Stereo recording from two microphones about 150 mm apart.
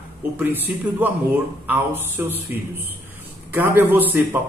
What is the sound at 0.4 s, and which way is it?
Speech, 10° right (ahead or behind).